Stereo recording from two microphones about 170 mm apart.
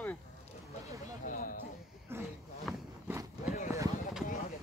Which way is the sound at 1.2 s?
55° left (ahead or behind).